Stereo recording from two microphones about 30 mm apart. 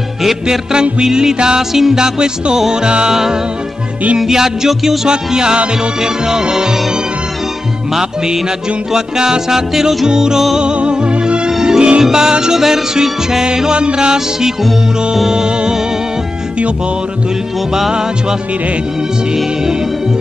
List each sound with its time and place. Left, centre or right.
0.5 s music: right
1.6 s music: centre
2.0 s music: right
3.1 s music: centre
5.1 s music: right
8.9 s music: right
10.6 s music: right
12.5 s music: centre
13.7 s music: right